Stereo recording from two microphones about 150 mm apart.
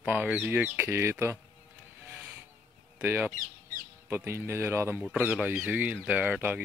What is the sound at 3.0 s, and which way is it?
Speech, 15° right (ahead or behind).